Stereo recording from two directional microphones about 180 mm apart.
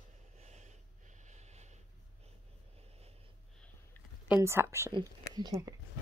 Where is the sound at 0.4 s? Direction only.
40° right (ahead or behind).